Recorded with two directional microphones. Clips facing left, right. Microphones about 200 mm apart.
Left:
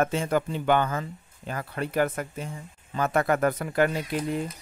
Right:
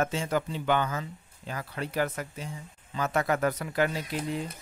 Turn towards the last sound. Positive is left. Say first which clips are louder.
# left 4 dB
turn(degrees=55)  # may be behind; listen again after turning